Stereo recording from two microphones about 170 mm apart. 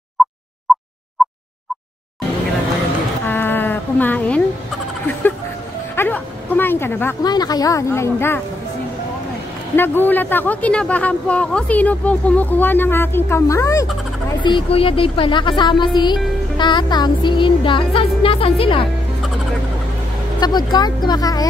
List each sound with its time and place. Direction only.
0.2 s a sound: centre (ahead or behind)
3.3 s insect: 10° left (ahead or behind)
5.9 s bow-wow: 10° left (ahead or behind)
7.2 s speech: 25° left (ahead or behind)
9.8 s speech: 10° left (ahead or behind)
14.4 s speech: 30° left (ahead or behind)
20.3 s speech: 25° left (ahead or behind)